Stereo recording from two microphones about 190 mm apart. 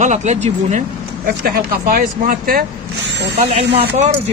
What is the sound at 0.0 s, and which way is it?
Speech, 40° right (ahead or behind).